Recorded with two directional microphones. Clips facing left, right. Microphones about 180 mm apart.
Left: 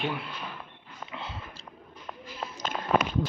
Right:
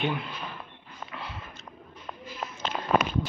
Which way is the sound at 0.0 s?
Centre (ahead or behind).